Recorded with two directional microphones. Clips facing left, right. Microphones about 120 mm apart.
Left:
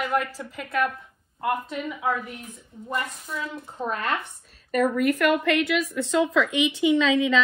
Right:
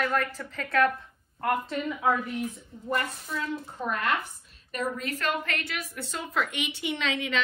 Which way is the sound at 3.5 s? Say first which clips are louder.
Left 1 dB; 25° left (ahead or behind).